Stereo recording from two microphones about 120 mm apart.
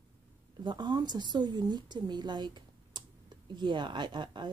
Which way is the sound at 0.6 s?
40° right (ahead or behind).